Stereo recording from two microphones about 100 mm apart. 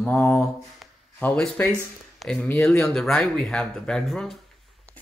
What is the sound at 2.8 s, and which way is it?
Speech, 5° left (ahead or behind).